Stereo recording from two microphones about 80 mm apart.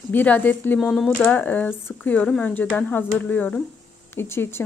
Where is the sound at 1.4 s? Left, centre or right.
Left.